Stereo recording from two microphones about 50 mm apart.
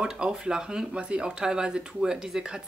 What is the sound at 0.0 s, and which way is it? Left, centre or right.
Speech, centre.